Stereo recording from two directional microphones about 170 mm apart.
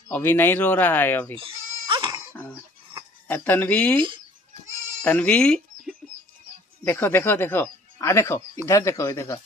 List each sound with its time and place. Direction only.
0.1 s speech: 10° left (ahead or behind)
1.3 s goat: 30° right (ahead or behind)
3.3 s speech: 10° left (ahead or behind)
5.0 s speech: 10° left (ahead or behind)
6.8 s speech: 10° left (ahead or behind)